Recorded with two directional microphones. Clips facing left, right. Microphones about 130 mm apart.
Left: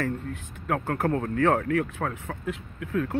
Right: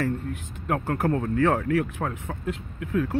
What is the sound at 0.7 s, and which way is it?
Speech, 20° right (ahead or behind).